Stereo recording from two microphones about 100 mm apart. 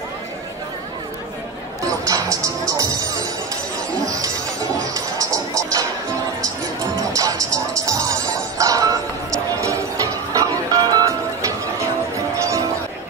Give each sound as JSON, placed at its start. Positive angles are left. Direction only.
{"t": 2.0, "sound": "music", "side_deg": -35}
{"t": 4.0, "sound": "a sound", "side_deg": -35}
{"t": 4.9, "sound": "music", "side_deg": -35}
{"t": 7.2, "sound": "music", "side_deg": -35}
{"t": 10.3, "sound": "music", "side_deg": -35}